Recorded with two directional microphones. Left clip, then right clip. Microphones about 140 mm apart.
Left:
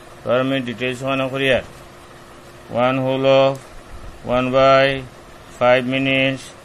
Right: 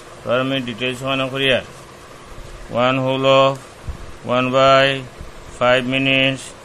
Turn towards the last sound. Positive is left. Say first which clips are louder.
# right 2 dB
turn(degrees=10)  # may be behind; listen again after turning